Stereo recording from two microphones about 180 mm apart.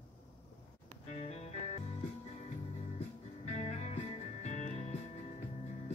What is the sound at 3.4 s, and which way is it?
Music, 40° left (ahead or behind).